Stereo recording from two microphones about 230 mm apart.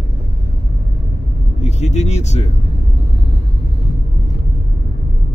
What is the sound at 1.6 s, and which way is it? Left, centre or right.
Speech, left.